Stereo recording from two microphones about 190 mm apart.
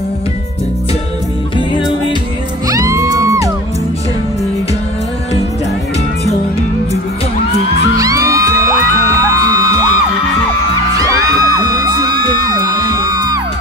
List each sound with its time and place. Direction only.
2.7 s music: 20° right (ahead or behind)
7.9 s music: 20° right (ahead or behind)
11.0 s music: 20° right (ahead or behind)